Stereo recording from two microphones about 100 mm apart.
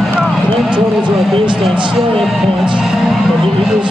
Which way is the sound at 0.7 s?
55° right (ahead or behind).